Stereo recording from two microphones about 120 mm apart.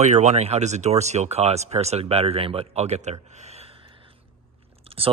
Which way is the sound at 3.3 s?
65° right (ahead or behind).